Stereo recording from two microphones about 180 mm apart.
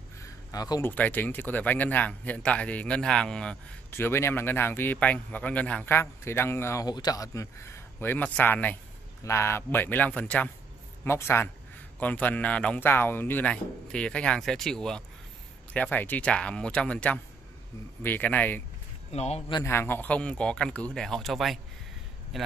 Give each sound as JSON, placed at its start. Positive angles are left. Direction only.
{"t": 0.2, "sound": "a sound", "side_deg": 20}
{"t": 0.9, "sound": "speech", "side_deg": 10}
{"t": 19.1, "sound": "speech", "side_deg": 35}
{"t": 19.5, "sound": "speech", "side_deg": 15}